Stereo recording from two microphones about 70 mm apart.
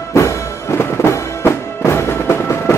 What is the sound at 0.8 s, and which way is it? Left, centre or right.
Music, left.